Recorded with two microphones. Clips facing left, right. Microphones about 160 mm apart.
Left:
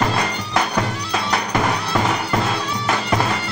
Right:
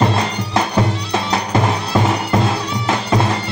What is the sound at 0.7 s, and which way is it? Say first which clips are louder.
Music: right 4 dB; 25° right (ahead or behind).